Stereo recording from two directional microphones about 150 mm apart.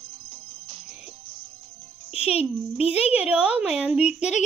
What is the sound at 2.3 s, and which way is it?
Speech, 45° left (ahead or behind).